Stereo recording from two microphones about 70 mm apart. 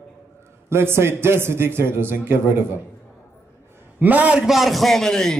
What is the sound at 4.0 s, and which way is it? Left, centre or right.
Speech, right.